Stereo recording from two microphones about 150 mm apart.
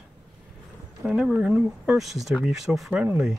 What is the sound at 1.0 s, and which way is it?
Speech, 5° right (ahead or behind).